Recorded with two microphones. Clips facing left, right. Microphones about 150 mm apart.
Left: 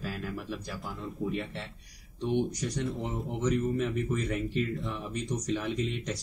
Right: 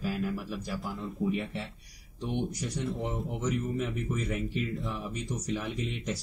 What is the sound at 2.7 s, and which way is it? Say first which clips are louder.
Speech: even; centre (ahead or behind).